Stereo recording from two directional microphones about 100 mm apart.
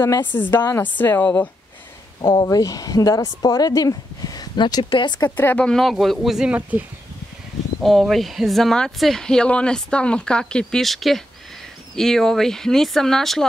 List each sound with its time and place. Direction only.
0.0 s a woman's voice: 20° left (ahead or behind)
2.2 s a woman's voice: 40° left (ahead or behind)
4.8 s speech: 55° left (ahead or behind)
5.2 s a woman's voice: 20° left (ahead or behind)
5.7 s speech: centre (ahead or behind)
7.8 s speech: centre (ahead or behind)